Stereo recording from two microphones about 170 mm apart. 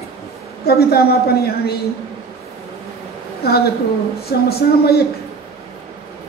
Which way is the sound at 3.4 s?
65° left (ahead or behind).